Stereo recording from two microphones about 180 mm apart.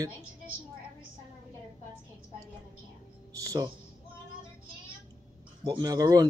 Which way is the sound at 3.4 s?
20° right (ahead or behind).